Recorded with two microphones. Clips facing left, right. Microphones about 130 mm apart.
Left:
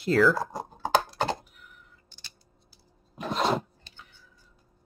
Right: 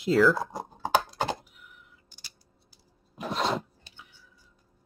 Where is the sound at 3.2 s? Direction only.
Centre (ahead or behind).